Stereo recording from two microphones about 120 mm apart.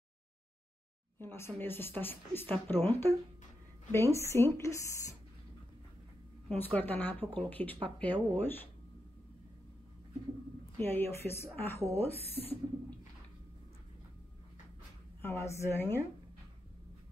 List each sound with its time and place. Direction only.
1.2 s speech: 20° left (ahead or behind)
6.5 s speech: 15° left (ahead or behind)
10.8 s speech: 20° left (ahead or behind)
12.1 s speech: 55° left (ahead or behind)
15.2 s speech: 25° left (ahead or behind)